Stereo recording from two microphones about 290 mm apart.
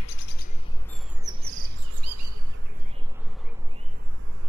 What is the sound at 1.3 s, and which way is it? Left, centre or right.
Bird, centre.